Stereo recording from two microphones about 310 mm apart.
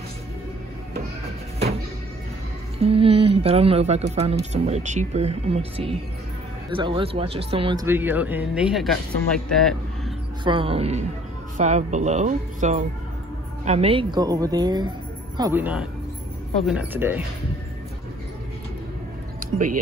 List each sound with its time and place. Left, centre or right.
2.8 s speech: centre
10.4 s a man's voice: centre